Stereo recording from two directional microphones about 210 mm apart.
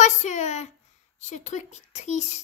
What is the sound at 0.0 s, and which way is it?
A woman's voice, 35° left (ahead or behind).